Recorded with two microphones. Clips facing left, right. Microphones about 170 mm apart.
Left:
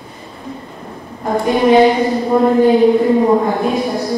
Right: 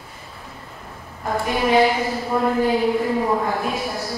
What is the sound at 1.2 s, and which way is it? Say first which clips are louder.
Speech: left 8 dB; 20° left (ahead or behind).